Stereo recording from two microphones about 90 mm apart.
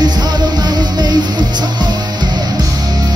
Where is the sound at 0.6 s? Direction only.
50° right (ahead or behind).